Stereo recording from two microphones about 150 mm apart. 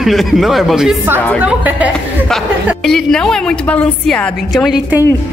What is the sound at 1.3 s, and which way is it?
Speech, 10° right (ahead or behind).